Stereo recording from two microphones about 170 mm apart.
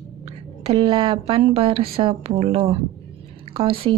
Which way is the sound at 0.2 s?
30° right (ahead or behind).